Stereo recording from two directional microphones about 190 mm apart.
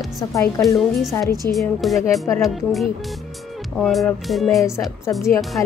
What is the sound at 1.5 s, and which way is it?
Speech, centre (ahead or behind).